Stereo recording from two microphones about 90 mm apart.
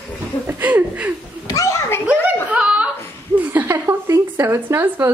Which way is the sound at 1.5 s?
40° left (ahead or behind).